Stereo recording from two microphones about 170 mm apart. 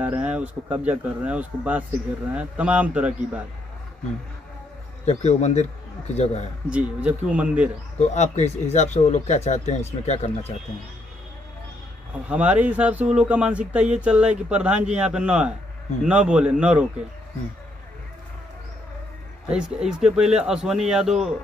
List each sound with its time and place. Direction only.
0.0 s speech: 5° right (ahead or behind)
5.0 s speech: 40° left (ahead or behind)
6.7 s speech: 5° right (ahead or behind)
8.0 s speech: 40° left (ahead or behind)
12.3 s speech: 10° right (ahead or behind)
19.5 s speech: 5° right (ahead or behind)